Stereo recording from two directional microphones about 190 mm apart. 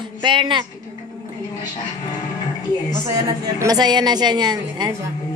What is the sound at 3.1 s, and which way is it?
A woman's voice, 20° right (ahead or behind).